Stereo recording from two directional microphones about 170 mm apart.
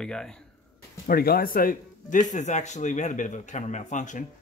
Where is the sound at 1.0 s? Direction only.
60° left (ahead or behind).